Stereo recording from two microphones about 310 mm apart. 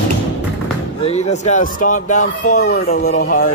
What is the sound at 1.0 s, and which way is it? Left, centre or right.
Speech, left.